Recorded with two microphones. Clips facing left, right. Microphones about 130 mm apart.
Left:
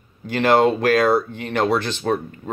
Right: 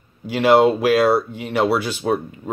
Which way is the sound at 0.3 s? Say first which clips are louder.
Right 2 dB; 5° right (ahead or behind).